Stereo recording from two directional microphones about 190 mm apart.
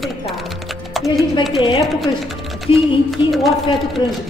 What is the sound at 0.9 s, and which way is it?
Typing, centre (ahead or behind).